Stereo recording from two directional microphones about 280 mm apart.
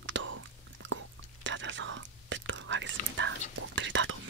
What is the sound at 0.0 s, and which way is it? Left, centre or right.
Whispering, right.